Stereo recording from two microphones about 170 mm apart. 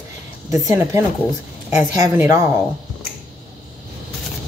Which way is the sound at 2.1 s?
15° right (ahead or behind).